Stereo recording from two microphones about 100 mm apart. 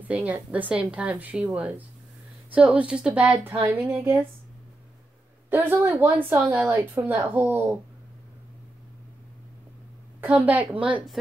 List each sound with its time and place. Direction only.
0.1 s a woman's voice: 15° right (ahead or behind)
5.5 s a woman's voice: 20° right (ahead or behind)
10.2 s a woman's voice: 15° right (ahead or behind)